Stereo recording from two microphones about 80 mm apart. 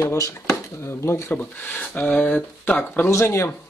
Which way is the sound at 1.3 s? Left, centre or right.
Left.